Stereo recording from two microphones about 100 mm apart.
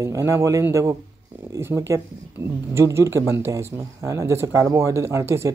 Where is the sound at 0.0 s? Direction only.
30° right (ahead or behind).